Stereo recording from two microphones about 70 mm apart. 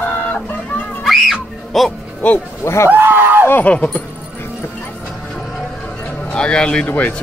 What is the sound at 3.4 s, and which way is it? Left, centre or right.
Speech, left.